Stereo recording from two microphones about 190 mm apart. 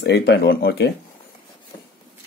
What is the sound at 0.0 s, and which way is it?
Speech, 60° left (ahead or behind).